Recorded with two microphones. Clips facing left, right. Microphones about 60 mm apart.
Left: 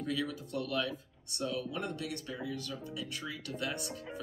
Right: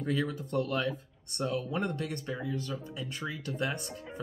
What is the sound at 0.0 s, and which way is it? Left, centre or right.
Speech, right.